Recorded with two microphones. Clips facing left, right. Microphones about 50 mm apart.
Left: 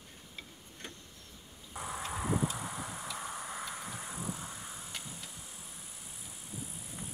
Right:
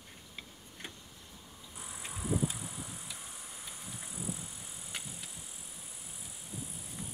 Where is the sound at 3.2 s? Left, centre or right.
Left.